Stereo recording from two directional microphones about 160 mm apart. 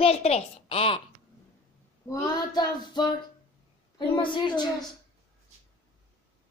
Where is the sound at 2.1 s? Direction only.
25° left (ahead or behind).